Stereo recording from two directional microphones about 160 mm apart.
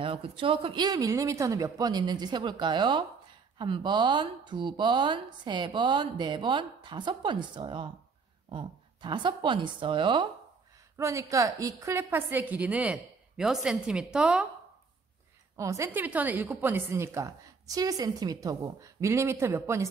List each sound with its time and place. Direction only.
0.0 s a woman's voice: 35° right (ahead or behind)
11.0 s a woman's voice: 20° right (ahead or behind)
15.5 s speech: 20° right (ahead or behind)